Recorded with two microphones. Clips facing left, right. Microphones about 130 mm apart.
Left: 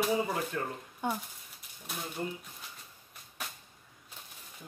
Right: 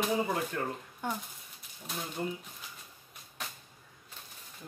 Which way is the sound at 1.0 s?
20° left (ahead or behind).